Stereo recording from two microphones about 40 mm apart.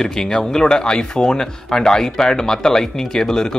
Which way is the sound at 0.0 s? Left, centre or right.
Centre.